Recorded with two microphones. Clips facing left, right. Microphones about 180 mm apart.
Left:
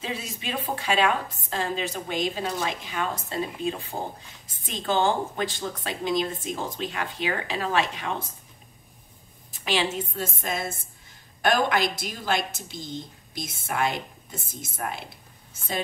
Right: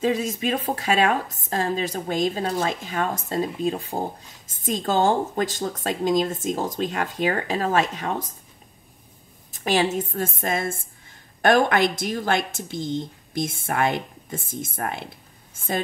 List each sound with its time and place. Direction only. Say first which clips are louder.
0.0 s speech: right 11 dB; 45° right (ahead or behind)
9.5 s speech: right 5 dB; 45° right (ahead or behind)
12.7 s speech: right 10 dB; 20° right (ahead or behind)
13.4 s speech: right 4 dB; 50° right (ahead or behind)